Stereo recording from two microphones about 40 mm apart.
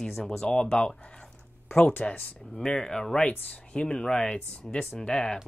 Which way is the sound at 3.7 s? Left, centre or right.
Left.